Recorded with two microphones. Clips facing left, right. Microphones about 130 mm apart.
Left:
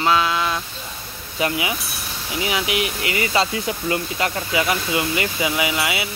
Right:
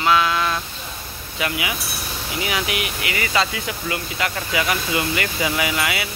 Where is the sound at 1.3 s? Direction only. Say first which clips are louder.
Left 3 dB; 30° left (ahead or behind).